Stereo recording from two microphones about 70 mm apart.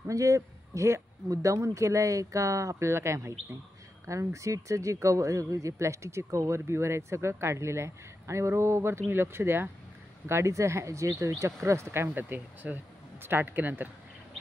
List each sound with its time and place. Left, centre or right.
0.1 s speech: right
12.1 s speech: right